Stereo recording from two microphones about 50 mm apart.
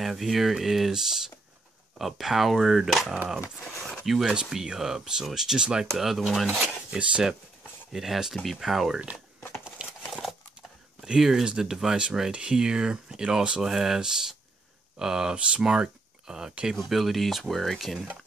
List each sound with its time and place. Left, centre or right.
0.0 s speech: centre
7.0 s speech: right
7.9 s speech: centre
9.8 s crumpling: right
11.0 s speech: centre
16.7 s speech: centre